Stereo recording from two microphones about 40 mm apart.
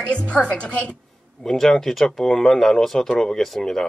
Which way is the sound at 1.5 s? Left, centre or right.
Centre.